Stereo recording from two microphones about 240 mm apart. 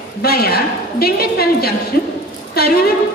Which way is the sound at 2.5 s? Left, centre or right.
Left.